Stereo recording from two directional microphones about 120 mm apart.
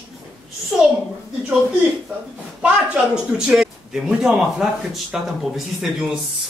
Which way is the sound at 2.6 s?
10° right (ahead or behind).